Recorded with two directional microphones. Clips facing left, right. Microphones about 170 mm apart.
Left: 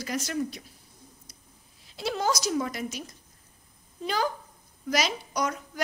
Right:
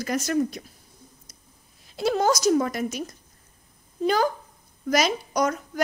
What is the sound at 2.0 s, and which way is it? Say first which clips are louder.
A woman's voice: right 7 dB; 50° right (ahead or behind).